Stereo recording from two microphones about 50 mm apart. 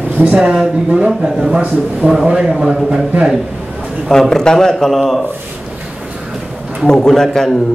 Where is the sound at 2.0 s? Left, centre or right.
Right.